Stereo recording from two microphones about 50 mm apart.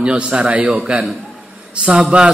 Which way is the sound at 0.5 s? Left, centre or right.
Right.